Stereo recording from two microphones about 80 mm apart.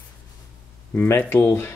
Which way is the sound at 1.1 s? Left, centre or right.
Left.